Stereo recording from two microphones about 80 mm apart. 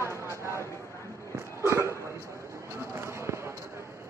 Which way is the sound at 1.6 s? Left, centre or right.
Right.